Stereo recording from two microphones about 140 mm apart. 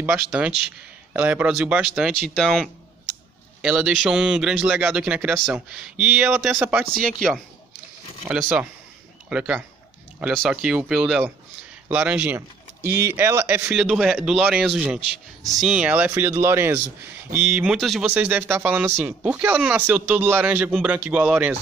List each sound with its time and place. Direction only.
0.3 s a man's voice: 10° right (ahead or behind)
8.3 s a man's voice: 10° right (ahead or behind)
13.7 s a man's voice: 5° right (ahead or behind)
18.1 s speech: 10° right (ahead or behind)